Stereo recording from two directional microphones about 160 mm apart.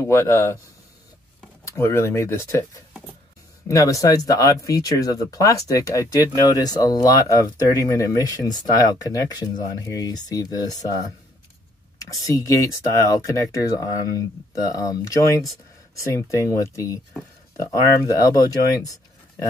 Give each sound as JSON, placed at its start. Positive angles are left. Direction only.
{"t": 0.0, "sound": "speech", "side_deg": 15}
{"t": 1.6, "sound": "speech", "side_deg": 20}
{"t": 12.3, "sound": "speech", "side_deg": 20}